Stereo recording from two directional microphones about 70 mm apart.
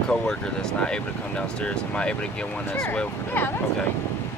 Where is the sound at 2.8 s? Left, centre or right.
Left.